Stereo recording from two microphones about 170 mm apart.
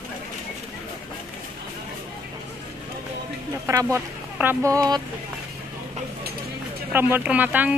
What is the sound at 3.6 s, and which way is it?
Speech, 15° right (ahead or behind).